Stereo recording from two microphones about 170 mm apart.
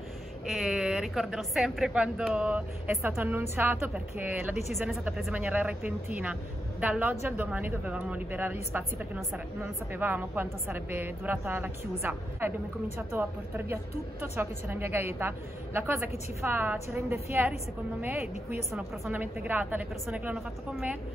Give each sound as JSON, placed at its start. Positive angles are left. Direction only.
{"t": 0.5, "sound": "a woman's voice", "side_deg": 0}
{"t": 18.2, "sound": "a woman's voice", "side_deg": 40}
{"t": 18.7, "sound": "a woman's voice", "side_deg": -10}